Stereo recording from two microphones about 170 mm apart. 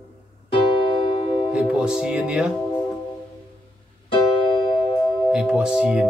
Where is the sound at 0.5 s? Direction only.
30° left (ahead or behind).